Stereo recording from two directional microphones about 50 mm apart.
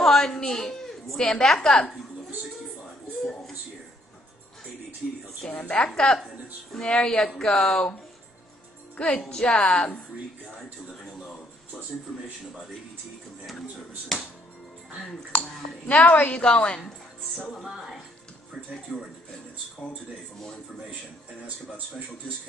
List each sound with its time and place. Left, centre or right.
0.0 s a woman's voice: centre
3.2 s a sound: centre
5.5 s a woman's voice: left
5.9 s speech: centre
8.9 s a woman's voice: left
10.9 s a sound: centre
14.1 s speech: centre
15.9 s a woman's voice: left
17.6 s speech: centre
18.7 s speech: centre